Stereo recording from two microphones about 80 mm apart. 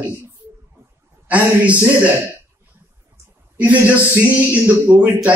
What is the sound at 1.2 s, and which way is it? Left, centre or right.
Speech, centre.